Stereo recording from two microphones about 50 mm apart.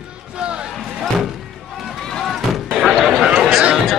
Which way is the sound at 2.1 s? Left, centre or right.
Centre.